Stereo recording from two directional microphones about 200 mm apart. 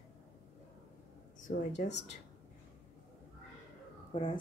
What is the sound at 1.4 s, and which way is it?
Speech, 35° left (ahead or behind).